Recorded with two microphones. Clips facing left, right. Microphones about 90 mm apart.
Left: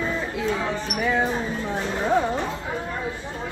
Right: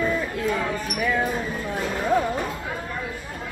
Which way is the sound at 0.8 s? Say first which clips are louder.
Left 3 dB; 25° left (ahead or behind).